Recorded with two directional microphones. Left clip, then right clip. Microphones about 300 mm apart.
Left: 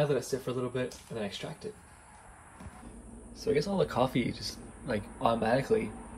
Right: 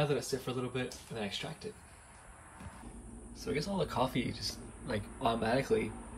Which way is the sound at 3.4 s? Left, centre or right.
Centre.